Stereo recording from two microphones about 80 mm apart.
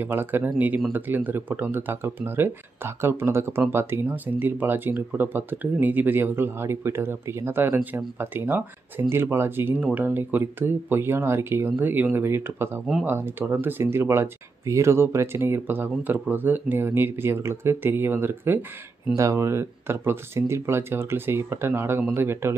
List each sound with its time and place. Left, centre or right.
0.0 s speech: right
19.1 s speech: right